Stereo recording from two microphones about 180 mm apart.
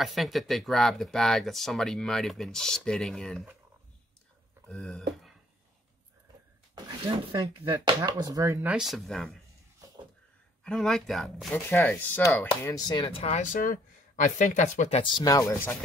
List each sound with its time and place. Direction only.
0.0 s speech: centre (ahead or behind)
4.6 s speech: 5° left (ahead or behind)
7.3 s speech: 20° right (ahead or behind); by 9.4 s centre (ahead or behind)
10.6 s speech: centre (ahead or behind)
12.6 s speech: 20° left (ahead or behind); by 15.0 s 40° left (ahead or behind)
15.0 s speech: 20° left (ahead or behind)